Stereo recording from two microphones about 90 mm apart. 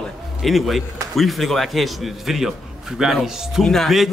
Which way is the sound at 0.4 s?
Centre (ahead or behind).